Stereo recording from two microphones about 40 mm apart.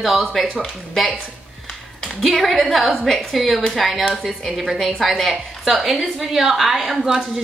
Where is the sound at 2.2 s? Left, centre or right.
Centre.